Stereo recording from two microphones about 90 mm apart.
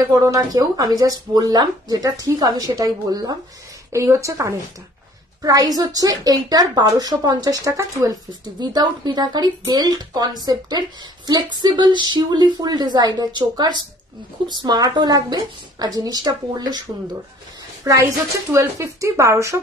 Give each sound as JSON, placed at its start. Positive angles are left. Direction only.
{"t": 0.1, "sound": "speech", "side_deg": -40}
{"t": 3.9, "sound": "speech", "side_deg": -35}
{"t": 8.3, "sound": "speech", "side_deg": -50}
{"t": 17.8, "sound": "speech", "side_deg": -35}